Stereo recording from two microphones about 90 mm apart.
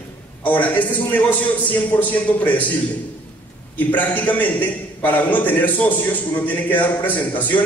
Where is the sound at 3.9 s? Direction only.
20° left (ahead or behind).